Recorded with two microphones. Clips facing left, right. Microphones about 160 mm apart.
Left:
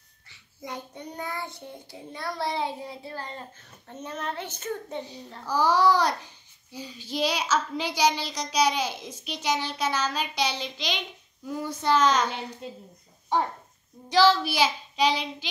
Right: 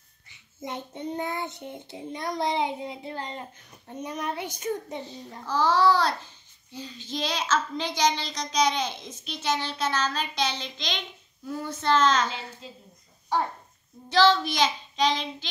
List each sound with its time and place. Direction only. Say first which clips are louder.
0.3 s child singing: right 2 dB; 25° right (ahead or behind)
5.5 s a child's voice: even; 10° left (ahead or behind)
12.6 s speech: left 6 dB; 60° left (ahead or behind)
14.0 s a child's voice: even; 10° left (ahead or behind)